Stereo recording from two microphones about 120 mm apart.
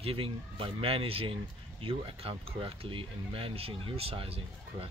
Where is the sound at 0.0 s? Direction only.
50° right (ahead or behind).